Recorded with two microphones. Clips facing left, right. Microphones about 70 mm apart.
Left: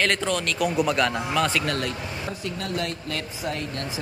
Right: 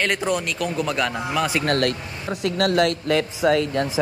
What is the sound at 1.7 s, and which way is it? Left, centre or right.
Speech, right.